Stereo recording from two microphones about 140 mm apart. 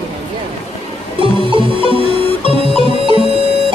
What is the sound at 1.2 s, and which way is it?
Music, 35° right (ahead or behind).